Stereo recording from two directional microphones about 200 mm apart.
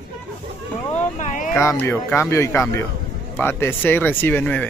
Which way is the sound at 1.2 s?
40° left (ahead or behind).